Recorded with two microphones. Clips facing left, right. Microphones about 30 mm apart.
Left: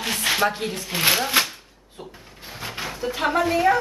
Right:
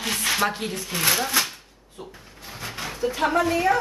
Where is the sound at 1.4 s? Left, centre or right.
Left.